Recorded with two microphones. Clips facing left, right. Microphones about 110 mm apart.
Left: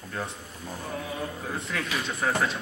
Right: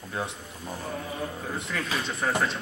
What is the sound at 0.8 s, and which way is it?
Mantra, 5° left (ahead or behind).